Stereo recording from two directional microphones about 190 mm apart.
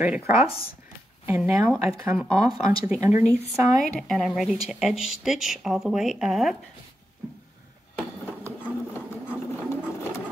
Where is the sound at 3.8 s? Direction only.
5° left (ahead or behind).